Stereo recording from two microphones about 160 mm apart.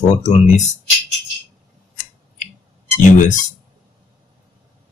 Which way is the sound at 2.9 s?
50° left (ahead or behind).